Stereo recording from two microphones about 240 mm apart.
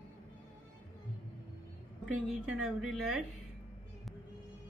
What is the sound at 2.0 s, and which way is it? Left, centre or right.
A woman's voice, centre.